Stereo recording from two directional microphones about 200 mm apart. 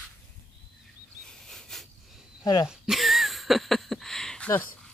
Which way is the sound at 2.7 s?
Centre (ahead or behind).